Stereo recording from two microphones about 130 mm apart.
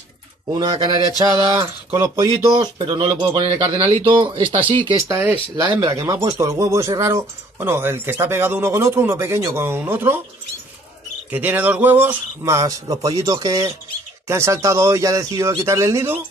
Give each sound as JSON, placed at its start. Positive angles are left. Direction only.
{"t": 0.6, "sound": "speech", "side_deg": -35}
{"t": 2.3, "sound": "speech", "side_deg": -35}
{"t": 5.0, "sound": "speech", "side_deg": -20}
{"t": 5.6, "sound": "speech", "side_deg": -30}
{"t": 11.2, "sound": "speech", "side_deg": -15}